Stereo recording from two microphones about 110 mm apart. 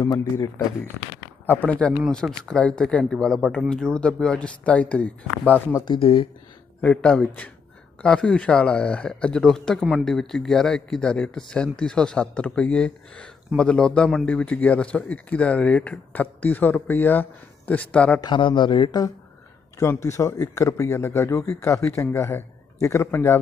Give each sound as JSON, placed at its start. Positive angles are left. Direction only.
{"t": 0.0, "sound": "speech", "side_deg": 35}
{"t": 1.4, "sound": "a man's voice", "side_deg": 15}
{"t": 5.9, "sound": "speech", "side_deg": 55}
{"t": 6.8, "sound": "a man's voice", "side_deg": 10}
{"t": 18.2, "sound": "speech", "side_deg": 45}
{"t": 19.8, "sound": "speech", "side_deg": 25}